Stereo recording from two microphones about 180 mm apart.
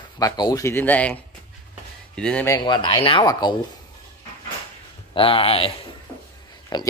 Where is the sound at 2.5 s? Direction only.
25° left (ahead or behind).